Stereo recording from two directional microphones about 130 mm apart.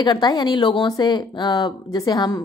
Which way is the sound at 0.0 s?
35° left (ahead or behind).